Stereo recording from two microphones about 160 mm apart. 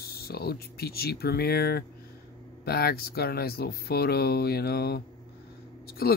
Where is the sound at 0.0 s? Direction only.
75° left (ahead or behind).